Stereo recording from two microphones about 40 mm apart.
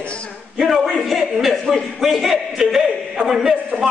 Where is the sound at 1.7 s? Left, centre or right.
Centre.